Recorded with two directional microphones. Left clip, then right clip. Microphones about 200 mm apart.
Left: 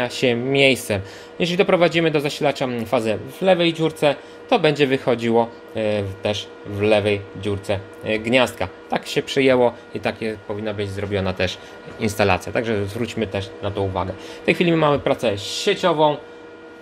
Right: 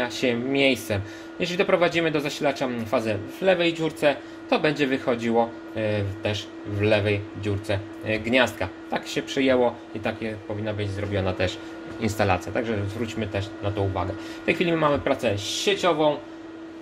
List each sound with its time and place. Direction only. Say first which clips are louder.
0.0 s speech: left 5 dB; 45° left (ahead or behind)